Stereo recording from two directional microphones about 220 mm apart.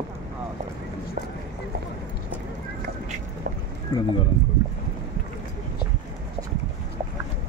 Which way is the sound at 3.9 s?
20° left (ahead or behind).